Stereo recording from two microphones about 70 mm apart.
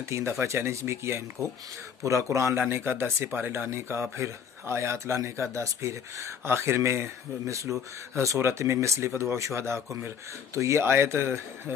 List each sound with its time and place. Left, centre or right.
0.1 s a man's voice: right
2.7 s speech: right